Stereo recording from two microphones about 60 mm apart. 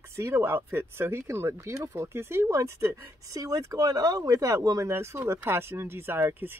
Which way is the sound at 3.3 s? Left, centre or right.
Right.